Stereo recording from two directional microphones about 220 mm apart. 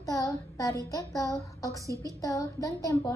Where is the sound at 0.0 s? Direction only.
15° left (ahead or behind).